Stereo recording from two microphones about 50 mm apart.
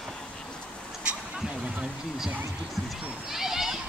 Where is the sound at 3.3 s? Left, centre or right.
Centre.